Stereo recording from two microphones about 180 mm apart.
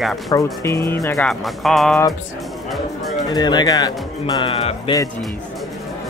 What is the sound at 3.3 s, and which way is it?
Speech, 25° left (ahead or behind).